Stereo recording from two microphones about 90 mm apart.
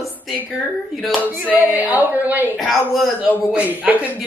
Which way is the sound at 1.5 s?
20° right (ahead or behind).